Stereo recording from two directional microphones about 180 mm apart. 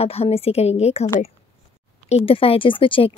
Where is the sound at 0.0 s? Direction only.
35° left (ahead or behind).